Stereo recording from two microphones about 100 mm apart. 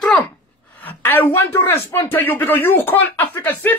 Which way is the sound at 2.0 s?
20° left (ahead or behind).